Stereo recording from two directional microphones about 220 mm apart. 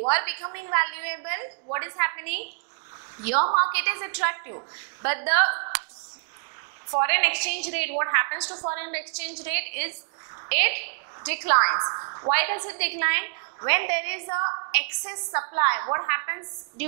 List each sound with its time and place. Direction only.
0.1 s a woman's voice: 15° right (ahead or behind)
3.7 s a woman's voice: 15° right (ahead or behind)
6.9 s a woman's voice: 15° right (ahead or behind)
11.6 s a woman's voice: 25° right (ahead or behind)